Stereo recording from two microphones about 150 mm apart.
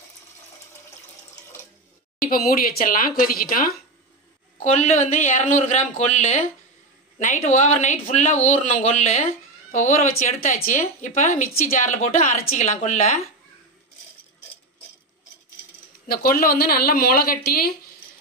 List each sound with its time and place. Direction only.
2.2 s a woman's voice: 70° left (ahead or behind)
4.6 s a woman's voice: 50° left (ahead or behind)
16.1 s a woman's voice: 75° left (ahead or behind); by 17.7 s 90° left